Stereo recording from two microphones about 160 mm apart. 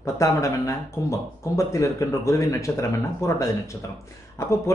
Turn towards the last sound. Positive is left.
turn(degrees=15)  # may be behind; listen again after turning